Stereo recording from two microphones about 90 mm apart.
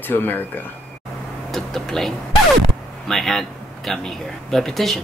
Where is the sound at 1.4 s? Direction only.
5° left (ahead or behind).